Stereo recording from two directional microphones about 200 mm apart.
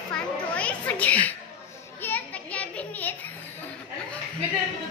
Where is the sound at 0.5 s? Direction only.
5° left (ahead or behind).